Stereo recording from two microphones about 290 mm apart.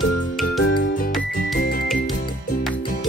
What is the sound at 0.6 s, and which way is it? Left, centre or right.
Music, left.